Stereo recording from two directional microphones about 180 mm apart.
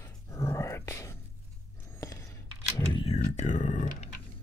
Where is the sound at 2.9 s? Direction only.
35° left (ahead or behind).